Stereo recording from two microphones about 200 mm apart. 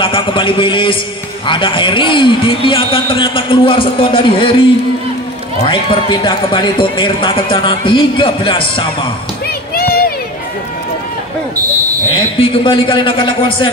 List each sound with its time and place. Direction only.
0.0 s a man's voice: 25° left (ahead or behind)
5.6 s a man's voice: 25° left (ahead or behind)
9.8 s a sound: 50° left (ahead or behind)
12.1 s a man's voice: 25° left (ahead or behind)